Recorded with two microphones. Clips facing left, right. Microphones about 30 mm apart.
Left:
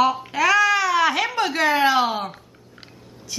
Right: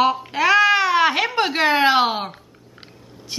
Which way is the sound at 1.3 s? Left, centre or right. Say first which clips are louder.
Right 2 dB; right.